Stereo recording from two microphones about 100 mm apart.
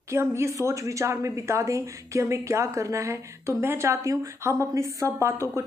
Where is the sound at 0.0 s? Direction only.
25° right (ahead or behind).